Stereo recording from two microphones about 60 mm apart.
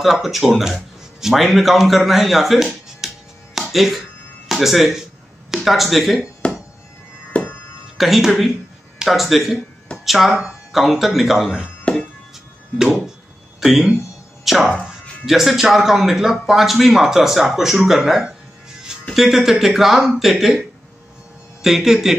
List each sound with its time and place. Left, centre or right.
0.0 s a man's voice: centre
3.5 s music: centre
4.5 s speech: centre
6.4 s a sound: centre
8.0 s a man's voice: centre
11.8 s music: centre
12.7 s a sound: centre
13.6 s a man's voice: centre
21.6 s a man's voice: centre